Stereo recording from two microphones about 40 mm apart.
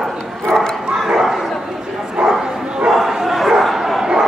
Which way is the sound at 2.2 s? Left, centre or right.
Centre.